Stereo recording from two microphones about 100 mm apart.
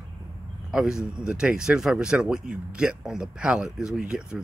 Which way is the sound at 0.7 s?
5° right (ahead or behind).